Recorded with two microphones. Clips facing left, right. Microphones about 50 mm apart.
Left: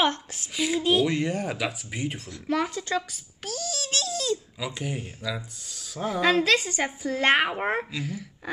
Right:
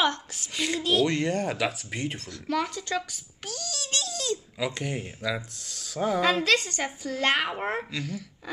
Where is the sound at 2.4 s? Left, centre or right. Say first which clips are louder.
Left 2 dB; centre.